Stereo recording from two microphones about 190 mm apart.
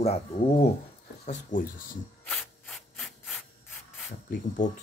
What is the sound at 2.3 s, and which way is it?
Rub, centre (ahead or behind).